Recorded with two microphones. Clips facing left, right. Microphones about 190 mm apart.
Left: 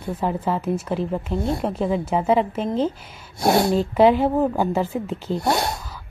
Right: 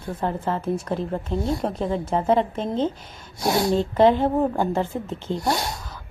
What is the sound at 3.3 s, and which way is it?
Speech, 60° left (ahead or behind).